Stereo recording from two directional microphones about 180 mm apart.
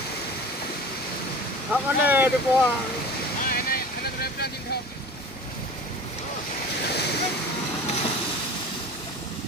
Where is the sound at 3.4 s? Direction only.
55° left (ahead or behind).